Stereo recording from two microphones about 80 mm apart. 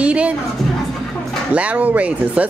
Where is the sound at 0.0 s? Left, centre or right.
Centre.